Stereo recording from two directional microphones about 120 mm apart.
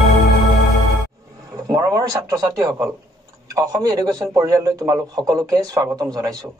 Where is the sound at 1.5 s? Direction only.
30° right (ahead or behind).